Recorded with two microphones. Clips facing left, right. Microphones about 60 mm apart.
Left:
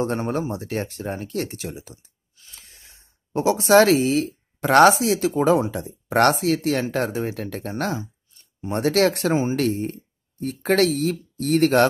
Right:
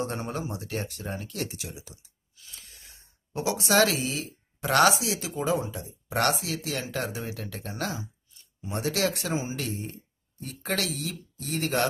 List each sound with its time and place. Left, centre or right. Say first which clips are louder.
0.0 s speech: left 8 dB; left